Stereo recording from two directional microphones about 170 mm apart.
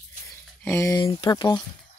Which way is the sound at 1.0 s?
25° left (ahead or behind).